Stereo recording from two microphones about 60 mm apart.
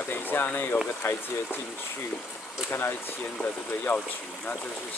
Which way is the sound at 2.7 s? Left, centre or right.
Left.